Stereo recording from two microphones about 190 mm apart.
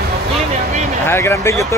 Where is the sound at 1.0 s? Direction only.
10° left (ahead or behind).